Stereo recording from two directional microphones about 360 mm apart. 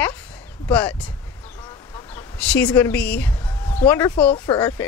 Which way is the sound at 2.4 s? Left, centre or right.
Centre.